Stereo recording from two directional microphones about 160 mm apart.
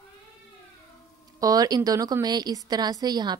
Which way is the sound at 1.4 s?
25° right (ahead or behind).